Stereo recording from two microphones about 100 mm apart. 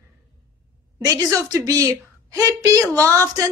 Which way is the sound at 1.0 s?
35° right (ahead or behind).